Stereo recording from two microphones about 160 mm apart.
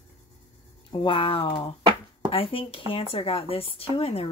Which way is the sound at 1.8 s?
30° right (ahead or behind).